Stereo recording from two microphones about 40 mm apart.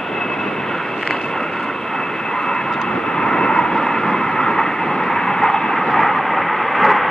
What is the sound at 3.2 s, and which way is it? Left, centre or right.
Vehicle, centre.